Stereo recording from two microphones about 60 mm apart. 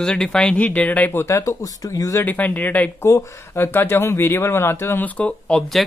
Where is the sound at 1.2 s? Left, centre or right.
Left.